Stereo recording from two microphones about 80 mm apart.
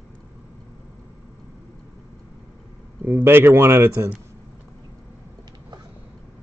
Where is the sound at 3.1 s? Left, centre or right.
Right.